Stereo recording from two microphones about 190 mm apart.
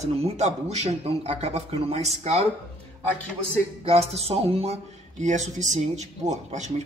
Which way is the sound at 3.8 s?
30° right (ahead or behind).